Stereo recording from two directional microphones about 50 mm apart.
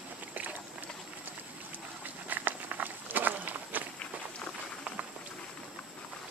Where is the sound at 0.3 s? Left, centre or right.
Right.